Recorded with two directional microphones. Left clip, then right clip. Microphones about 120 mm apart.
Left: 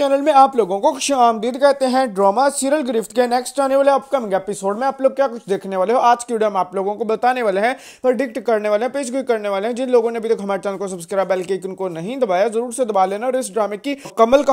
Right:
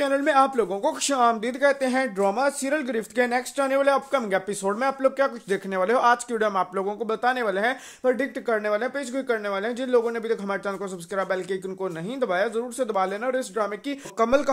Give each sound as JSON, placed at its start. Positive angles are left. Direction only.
{"t": 0.0, "sound": "speech", "side_deg": 35}
{"t": 7.1, "sound": "speech", "side_deg": 50}